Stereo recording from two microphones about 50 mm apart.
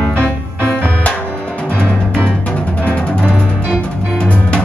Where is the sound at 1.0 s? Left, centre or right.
Left.